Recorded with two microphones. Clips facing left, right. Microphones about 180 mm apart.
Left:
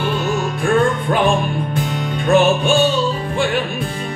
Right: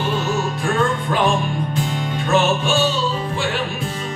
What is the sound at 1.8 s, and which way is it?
Music, 55° left (ahead or behind).